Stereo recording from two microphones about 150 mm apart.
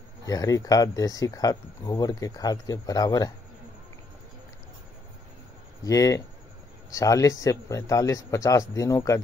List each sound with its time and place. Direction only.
0.2 s speech: 25° left (ahead or behind)
5.9 s speech: 20° left (ahead or behind)